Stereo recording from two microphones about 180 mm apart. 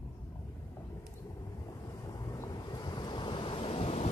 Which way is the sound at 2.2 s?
20° left (ahead or behind).